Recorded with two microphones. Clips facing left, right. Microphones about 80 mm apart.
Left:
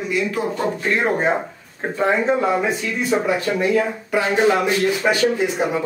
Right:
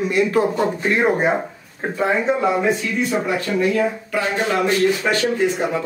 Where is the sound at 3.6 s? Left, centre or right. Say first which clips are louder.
Even; centre.